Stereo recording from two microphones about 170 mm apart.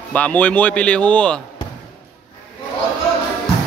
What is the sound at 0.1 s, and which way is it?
Speech, 10° left (ahead or behind).